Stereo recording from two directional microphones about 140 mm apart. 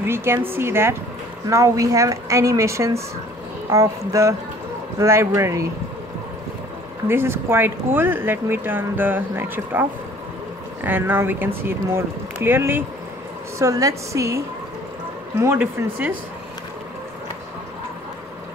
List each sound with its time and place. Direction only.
0.0 s a woman's voice: 15° right (ahead or behind)
4.1 s a woman's voice: 20° right (ahead or behind)
7.1 s a woman's voice: 15° right (ahead or behind)
15.4 s speech: 15° right (ahead or behind)